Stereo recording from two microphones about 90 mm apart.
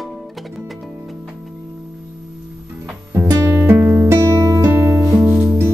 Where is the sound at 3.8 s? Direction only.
25° right (ahead or behind).